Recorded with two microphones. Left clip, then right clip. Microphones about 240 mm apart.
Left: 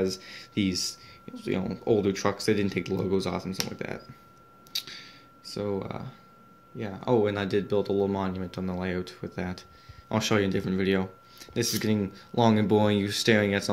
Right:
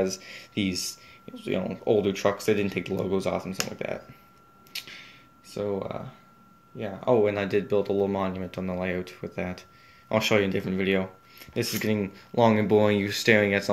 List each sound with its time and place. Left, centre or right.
0.2 s speech: centre
4.7 s a sound: centre
6.8 s speech: centre